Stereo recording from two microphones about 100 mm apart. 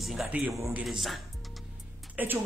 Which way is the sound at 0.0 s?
Centre (ahead or behind).